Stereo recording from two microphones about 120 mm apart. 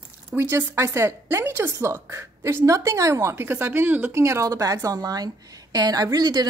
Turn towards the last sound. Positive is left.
turn(degrees=-35)  # may be behind; listen again after turning